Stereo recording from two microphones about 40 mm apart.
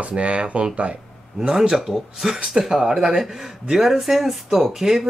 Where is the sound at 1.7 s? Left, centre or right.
Centre.